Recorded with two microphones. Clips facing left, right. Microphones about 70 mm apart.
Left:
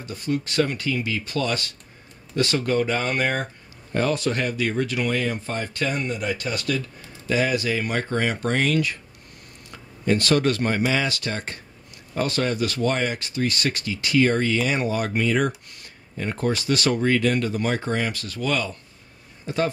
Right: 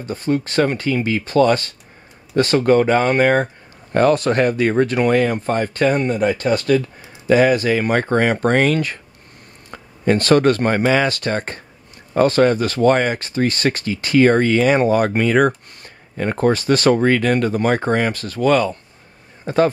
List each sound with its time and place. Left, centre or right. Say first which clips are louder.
0.0 s speech: right 6 dB; right
3.9 s speech: right 8 dB; right